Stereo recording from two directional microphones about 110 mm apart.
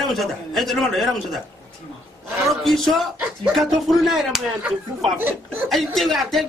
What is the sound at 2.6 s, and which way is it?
A woman's voice, centre (ahead or behind).